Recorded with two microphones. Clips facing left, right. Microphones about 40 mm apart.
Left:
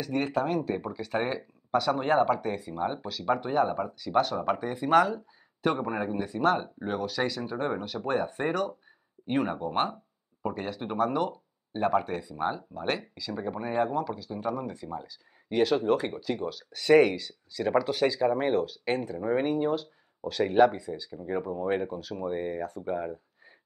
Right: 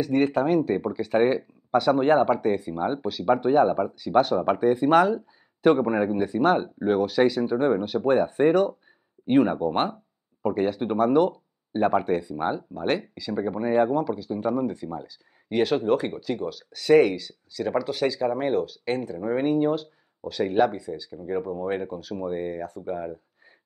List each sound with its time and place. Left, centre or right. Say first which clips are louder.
0.0 s speech: right 6 dB; centre
20.4 s speech: left 1 dB; centre